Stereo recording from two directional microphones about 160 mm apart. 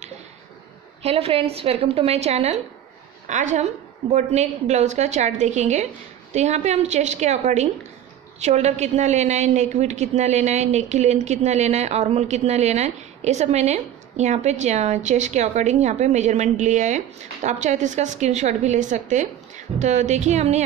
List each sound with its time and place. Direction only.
1.0 s a woman's voice: 40° right (ahead or behind)